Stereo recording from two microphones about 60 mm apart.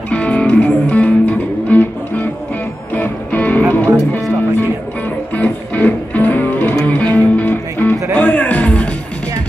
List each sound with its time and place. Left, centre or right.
0.1 s music: left
5.3 s music: left